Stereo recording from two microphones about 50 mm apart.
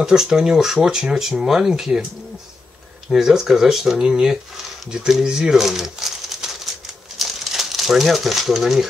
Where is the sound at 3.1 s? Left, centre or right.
Centre.